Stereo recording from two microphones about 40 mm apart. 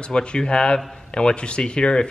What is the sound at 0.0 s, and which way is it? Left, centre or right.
Speech, left.